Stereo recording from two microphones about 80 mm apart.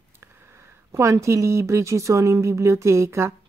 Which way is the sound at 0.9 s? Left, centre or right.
Right.